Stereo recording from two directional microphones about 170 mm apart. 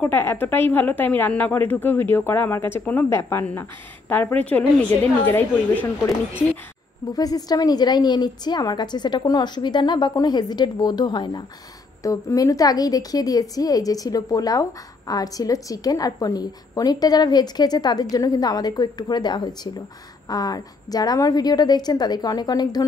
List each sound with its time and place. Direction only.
0.0 s a woman's voice: 10° left (ahead or behind)
7.2 s a woman's voice: 20° left (ahead or behind)